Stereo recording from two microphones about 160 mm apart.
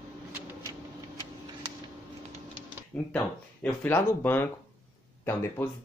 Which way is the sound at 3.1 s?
10° left (ahead or behind).